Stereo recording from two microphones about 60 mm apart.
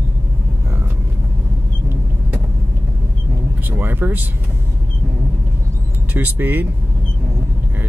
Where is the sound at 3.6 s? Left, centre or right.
Right.